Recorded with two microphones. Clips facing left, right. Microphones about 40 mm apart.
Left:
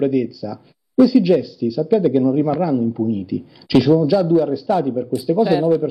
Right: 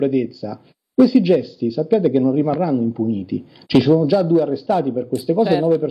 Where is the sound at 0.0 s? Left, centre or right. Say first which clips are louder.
Even; centre.